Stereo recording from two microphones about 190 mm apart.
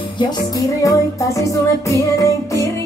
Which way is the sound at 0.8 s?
15° left (ahead or behind).